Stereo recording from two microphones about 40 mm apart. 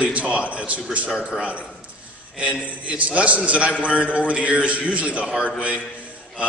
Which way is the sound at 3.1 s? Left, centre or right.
Right.